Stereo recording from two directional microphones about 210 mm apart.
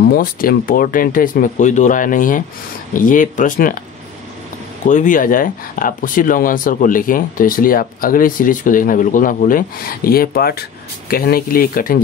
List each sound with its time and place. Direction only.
0.0 s speech: 45° left (ahead or behind)
4.8 s speech: 35° left (ahead or behind)